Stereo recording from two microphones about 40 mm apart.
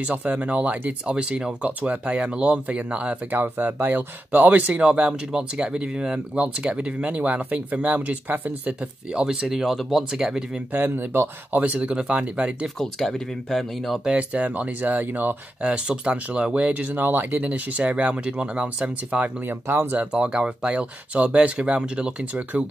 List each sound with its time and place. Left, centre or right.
0.0 s speech: right
1.0 s speech: right
5.3 s speech: right
9.5 s speech: centre
10.1 s speech: centre
10.7 s speech: right
11.6 s speech: right
12.7 s speech: centre
14.1 s speech: right
15.6 s speech: right
16.9 s speech: right
17.4 s speech: right